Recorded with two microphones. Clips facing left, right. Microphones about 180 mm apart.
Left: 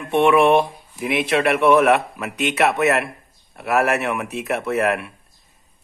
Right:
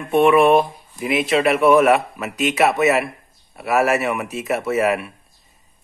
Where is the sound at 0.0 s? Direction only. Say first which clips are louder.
Right 1 dB; centre (ahead or behind).